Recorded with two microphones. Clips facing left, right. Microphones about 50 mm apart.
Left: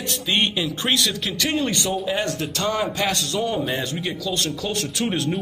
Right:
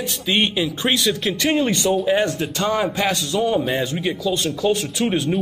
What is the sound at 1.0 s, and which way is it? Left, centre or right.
Speech, centre.